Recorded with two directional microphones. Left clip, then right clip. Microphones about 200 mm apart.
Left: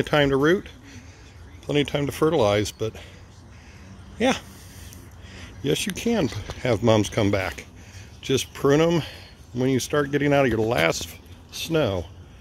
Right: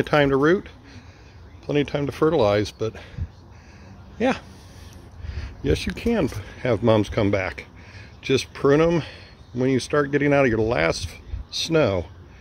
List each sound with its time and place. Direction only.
0.0 s speech: 5° right (ahead or behind)
4.2 s speech: centre (ahead or behind)